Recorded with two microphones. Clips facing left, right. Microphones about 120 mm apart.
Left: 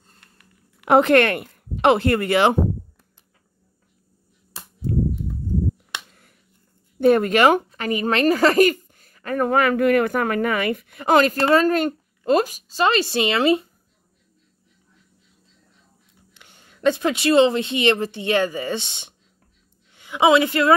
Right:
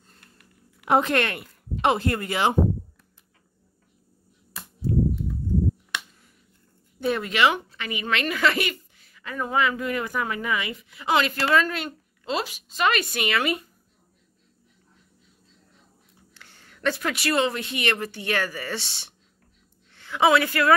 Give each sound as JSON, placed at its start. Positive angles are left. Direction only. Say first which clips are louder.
{"t": 0.7, "sound": "speech", "louder": "left 7 dB", "side_deg": 65}
{"t": 7.0, "sound": "a woman's voice", "louder": "left 7 dB", "side_deg": 50}
{"t": 16.3, "sound": "a woman's voice", "louder": "left 4 dB", "side_deg": 20}